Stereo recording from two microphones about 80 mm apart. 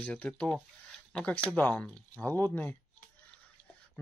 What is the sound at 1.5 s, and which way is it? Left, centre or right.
Speech, left.